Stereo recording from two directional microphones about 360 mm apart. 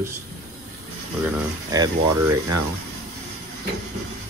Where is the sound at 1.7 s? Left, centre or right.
Centre.